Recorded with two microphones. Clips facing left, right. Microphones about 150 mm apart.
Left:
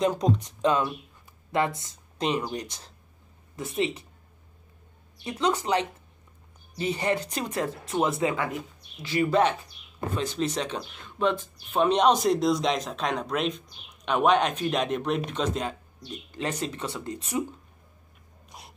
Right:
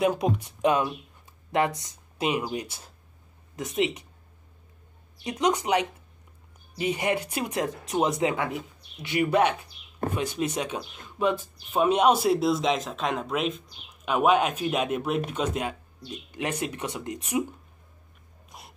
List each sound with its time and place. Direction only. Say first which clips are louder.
0.0 s speech: even; 10° right (ahead or behind)
5.2 s speech: right 1 dB; 15° right (ahead or behind)
18.5 s dog: even; centre (ahead or behind)